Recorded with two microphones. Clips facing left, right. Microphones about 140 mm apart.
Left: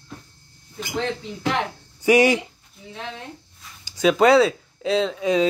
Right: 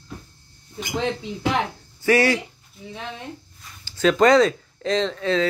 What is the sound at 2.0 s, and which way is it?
Speech, 15° left (ahead or behind).